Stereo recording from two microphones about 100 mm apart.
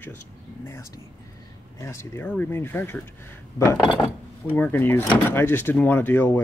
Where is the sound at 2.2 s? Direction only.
20° left (ahead or behind).